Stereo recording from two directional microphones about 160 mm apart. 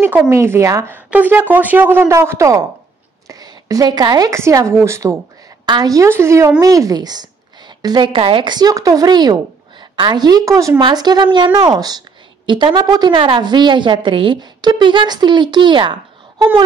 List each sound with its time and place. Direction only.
0.0 s a woman's voice: 15° right (ahead or behind)